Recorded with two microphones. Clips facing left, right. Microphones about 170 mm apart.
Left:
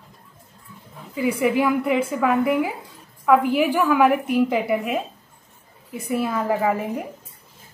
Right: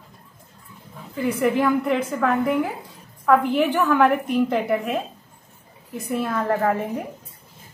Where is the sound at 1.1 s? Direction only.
10° left (ahead or behind).